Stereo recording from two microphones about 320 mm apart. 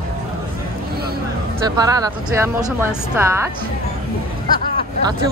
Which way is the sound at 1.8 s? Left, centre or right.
Centre.